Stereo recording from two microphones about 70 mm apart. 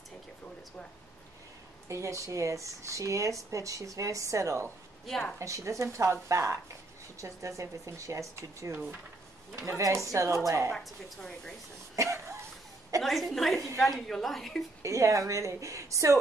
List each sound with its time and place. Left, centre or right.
1.9 s speech: right
9.8 s speech: right
10.7 s speech: centre
11.9 s cough: right
13.0 s a woman's voice: centre
14.8 s speech: right